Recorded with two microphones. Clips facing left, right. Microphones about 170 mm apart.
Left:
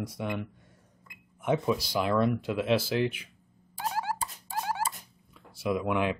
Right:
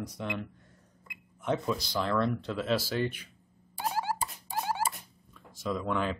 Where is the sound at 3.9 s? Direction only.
30° right (ahead or behind).